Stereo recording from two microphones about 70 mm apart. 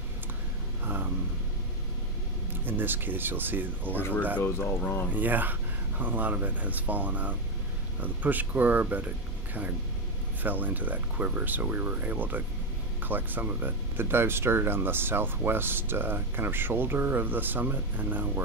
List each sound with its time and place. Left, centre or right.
0.8 s a sound: right
2.6 s speech: right
3.9 s speech: left
5.1 s speech: right